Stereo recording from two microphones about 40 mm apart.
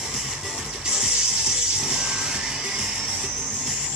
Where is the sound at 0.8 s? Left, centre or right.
Centre.